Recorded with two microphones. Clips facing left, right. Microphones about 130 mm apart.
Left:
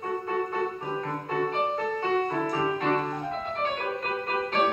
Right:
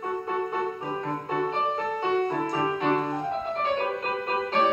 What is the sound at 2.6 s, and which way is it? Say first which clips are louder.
Music: right 2 dB; 15° right (ahead or behind).